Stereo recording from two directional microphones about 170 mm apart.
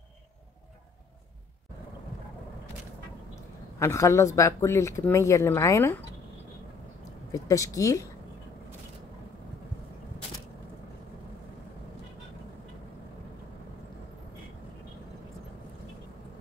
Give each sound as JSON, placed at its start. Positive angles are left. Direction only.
{"t": 3.8, "sound": "speech", "side_deg": 15}
{"t": 7.3, "sound": "speech", "side_deg": 20}